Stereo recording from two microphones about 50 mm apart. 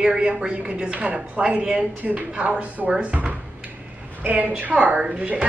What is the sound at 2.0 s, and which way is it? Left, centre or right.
A woman's voice, right.